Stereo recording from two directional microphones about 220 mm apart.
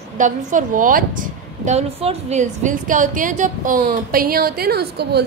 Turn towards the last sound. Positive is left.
turn(degrees=-45)  # may be behind; listen again after turning